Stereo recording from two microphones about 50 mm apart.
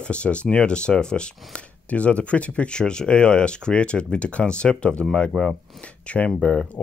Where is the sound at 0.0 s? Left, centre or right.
Left.